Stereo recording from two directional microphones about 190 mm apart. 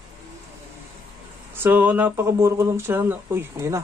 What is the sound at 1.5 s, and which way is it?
Speech, 10° right (ahead or behind).